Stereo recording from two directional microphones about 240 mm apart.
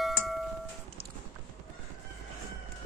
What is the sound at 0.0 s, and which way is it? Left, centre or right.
Music, centre.